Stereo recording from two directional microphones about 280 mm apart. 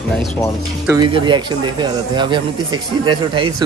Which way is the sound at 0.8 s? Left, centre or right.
Centre.